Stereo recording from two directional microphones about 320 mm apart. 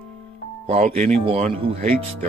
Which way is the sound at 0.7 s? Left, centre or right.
Right.